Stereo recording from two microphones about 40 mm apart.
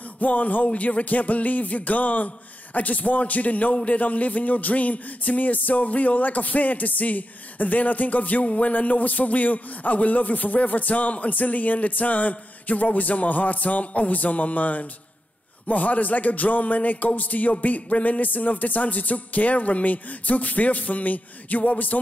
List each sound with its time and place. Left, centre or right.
0.2 s music: left